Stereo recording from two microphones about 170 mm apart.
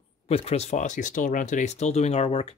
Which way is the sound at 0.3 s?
35° left (ahead or behind).